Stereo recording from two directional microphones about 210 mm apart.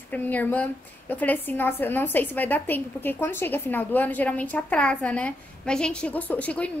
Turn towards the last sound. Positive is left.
turn(degrees=5)  # may be behind; listen again after turning